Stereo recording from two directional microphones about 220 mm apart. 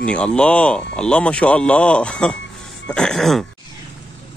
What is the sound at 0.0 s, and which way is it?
Speech, 5° left (ahead or behind).